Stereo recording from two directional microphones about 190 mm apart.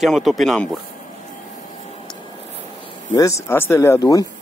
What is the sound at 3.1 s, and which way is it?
Speech, 15° left (ahead or behind).